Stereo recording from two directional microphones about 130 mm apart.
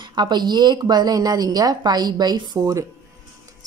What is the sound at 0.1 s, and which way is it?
Speech, 35° right (ahead or behind).